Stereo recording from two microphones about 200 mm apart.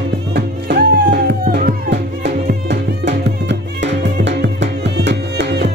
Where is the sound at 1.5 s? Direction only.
60° right (ahead or behind).